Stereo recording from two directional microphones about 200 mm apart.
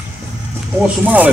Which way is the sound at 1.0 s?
10° right (ahead or behind).